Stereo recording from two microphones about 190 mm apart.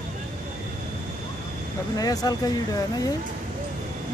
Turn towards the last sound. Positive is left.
turn(degrees=20)  # may be behind; listen again after turning